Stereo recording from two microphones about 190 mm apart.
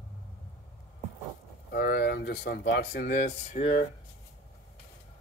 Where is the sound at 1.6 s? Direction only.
50° left (ahead or behind); by 3.8 s 35° left (ahead or behind).